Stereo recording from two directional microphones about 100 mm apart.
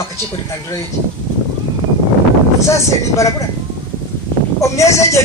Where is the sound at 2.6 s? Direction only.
30° left (ahead or behind).